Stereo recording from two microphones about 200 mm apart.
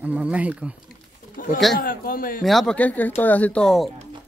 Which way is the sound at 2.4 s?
Centre (ahead or behind).